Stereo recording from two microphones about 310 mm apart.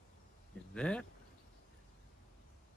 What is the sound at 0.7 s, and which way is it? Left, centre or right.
Speech, centre.